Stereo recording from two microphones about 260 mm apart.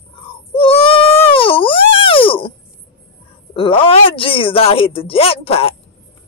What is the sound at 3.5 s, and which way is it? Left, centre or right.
A woman's voice, left.